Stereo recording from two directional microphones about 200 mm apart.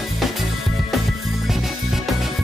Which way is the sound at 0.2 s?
Centre (ahead or behind).